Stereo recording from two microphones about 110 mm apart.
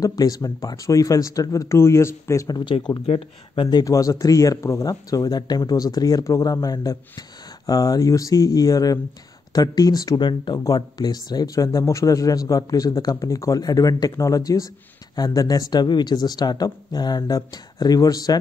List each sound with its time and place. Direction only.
0.0 s speech: 35° left (ahead or behind)
2.4 s speech: 40° left (ahead or behind)
3.7 s speech: 30° left (ahead or behind)